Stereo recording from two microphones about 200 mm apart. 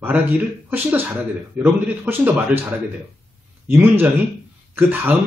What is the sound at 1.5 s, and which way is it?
A man's voice, 10° right (ahead or behind).